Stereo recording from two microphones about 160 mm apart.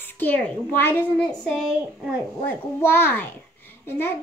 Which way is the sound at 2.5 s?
15° left (ahead or behind).